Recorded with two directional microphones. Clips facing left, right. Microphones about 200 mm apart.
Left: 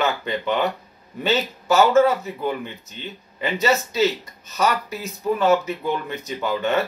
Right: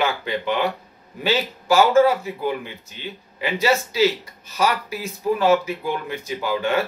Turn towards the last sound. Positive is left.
turn(degrees=-10)  # may be behind; listen again after turning